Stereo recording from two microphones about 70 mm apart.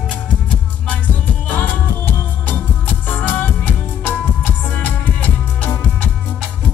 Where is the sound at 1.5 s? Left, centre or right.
Left.